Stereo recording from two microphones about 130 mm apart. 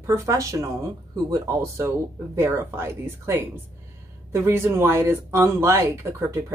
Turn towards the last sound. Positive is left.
turn(degrees=-20)  # may be behind; listen again after turning